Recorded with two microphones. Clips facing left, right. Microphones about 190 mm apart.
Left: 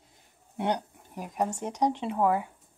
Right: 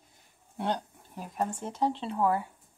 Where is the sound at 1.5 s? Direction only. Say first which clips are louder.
Left 2 dB; 15° left (ahead or behind).